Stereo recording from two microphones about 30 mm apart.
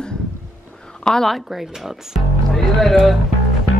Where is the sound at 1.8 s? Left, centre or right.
Centre.